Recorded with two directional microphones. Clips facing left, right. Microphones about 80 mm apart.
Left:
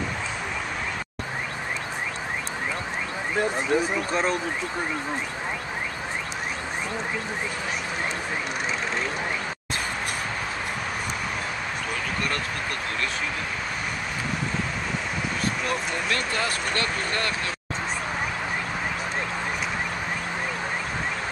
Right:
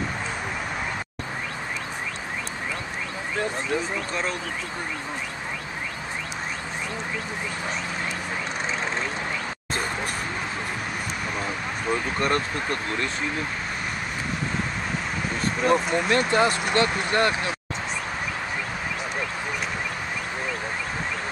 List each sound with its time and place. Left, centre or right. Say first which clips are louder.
3.7 s speech: left 3 dB; left
11.9 s speech: right 7 dB; right
15.6 s speech: right 6 dB; right